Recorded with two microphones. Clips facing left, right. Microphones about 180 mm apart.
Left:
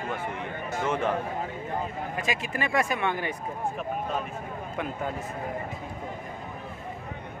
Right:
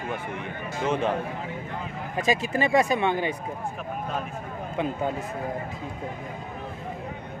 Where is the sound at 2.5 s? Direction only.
20° right (ahead or behind).